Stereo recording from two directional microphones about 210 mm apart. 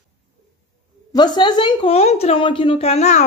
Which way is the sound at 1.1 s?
20° left (ahead or behind).